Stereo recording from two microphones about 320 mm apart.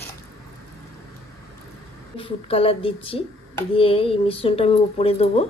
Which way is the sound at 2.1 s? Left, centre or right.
Centre.